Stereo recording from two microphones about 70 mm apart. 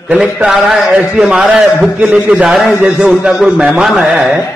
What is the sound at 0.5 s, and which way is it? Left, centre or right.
A man's voice, centre.